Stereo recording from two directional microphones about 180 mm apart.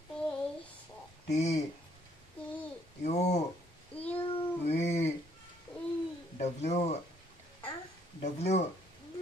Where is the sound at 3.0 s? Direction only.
40° left (ahead or behind).